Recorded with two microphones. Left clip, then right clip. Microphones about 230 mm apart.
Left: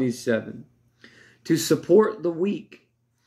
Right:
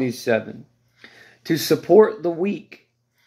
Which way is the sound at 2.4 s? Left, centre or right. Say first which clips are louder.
Right 1 dB; centre.